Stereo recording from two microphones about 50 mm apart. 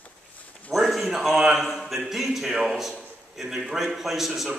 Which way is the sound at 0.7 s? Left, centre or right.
Centre.